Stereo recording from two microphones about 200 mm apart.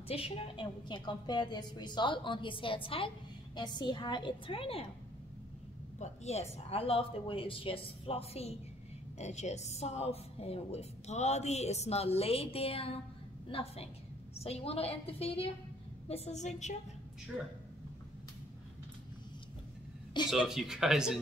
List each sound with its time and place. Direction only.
0.1 s a woman's voice: 25° left (ahead or behind)
5.9 s a woman's voice: 35° left (ahead or behind)
20.2 s speech: centre (ahead or behind)